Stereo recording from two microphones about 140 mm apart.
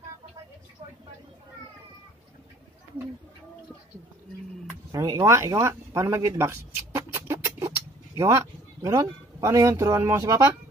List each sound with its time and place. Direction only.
4.9 s speech: 25° right (ahead or behind)